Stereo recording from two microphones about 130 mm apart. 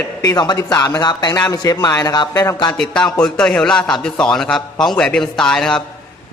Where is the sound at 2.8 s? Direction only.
5° left (ahead or behind).